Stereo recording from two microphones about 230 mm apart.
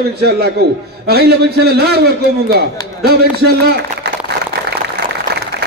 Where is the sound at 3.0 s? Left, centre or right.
Right.